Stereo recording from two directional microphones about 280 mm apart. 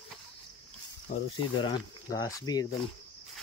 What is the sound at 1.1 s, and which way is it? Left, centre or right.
Speech, left.